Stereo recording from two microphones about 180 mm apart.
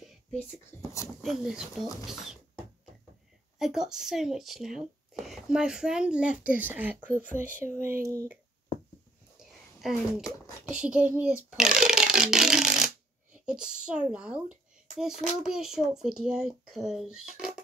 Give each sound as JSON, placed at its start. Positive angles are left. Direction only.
{"t": 1.2, "sound": "speech", "side_deg": 0}
{"t": 3.5, "sound": "speech", "side_deg": -5}
{"t": 8.7, "sound": "a sound", "side_deg": 30}
{"t": 9.8, "sound": "speech", "side_deg": 0}
{"t": 10.2, "sound": "speech", "side_deg": 15}
{"t": 10.7, "sound": "speech", "side_deg": -5}